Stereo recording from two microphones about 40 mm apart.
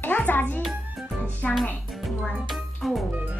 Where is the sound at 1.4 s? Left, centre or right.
Left.